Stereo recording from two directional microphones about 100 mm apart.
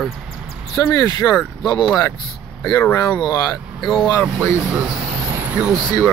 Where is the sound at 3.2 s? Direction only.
40° left (ahead or behind).